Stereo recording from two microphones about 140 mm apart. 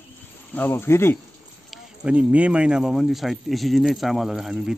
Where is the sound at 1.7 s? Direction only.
10° right (ahead or behind).